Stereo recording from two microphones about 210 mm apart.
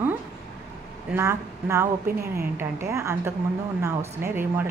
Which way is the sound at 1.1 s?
15° right (ahead or behind).